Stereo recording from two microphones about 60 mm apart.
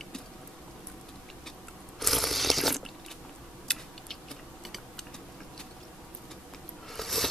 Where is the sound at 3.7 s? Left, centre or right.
Centre.